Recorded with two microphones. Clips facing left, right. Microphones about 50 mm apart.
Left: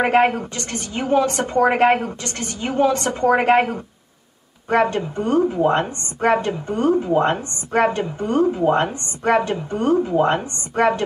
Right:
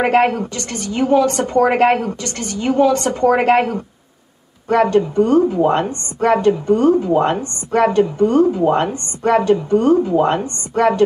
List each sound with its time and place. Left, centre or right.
0.1 s a woman's voice: centre